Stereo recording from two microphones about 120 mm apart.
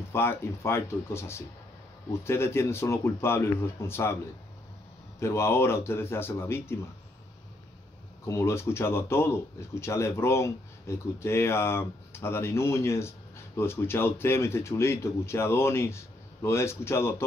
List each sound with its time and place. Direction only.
0.1 s speech: 20° left (ahead or behind)
5.2 s speech: 20° left (ahead or behind)
8.3 s speech: 25° left (ahead or behind)